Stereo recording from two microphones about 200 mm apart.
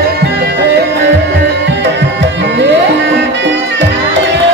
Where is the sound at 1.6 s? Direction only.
60° right (ahead or behind).